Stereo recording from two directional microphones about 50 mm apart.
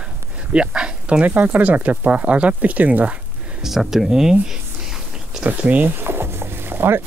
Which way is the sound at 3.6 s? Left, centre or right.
Centre.